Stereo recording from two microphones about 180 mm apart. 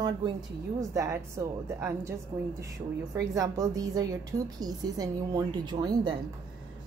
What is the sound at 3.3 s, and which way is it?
A woman's voice, 20° right (ahead or behind).